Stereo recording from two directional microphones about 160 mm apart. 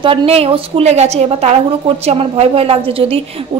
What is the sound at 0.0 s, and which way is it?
A woman's voice, 35° right (ahead or behind).